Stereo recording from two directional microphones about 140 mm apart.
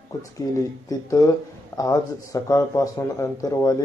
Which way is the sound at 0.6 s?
25° left (ahead or behind).